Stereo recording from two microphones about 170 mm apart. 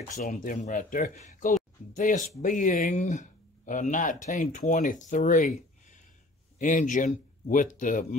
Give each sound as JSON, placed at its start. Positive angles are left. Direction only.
{"t": 0.3, "sound": "speech", "side_deg": 45}